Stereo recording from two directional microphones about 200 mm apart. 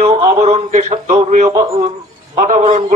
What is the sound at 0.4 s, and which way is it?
A man's voice, 35° right (ahead or behind).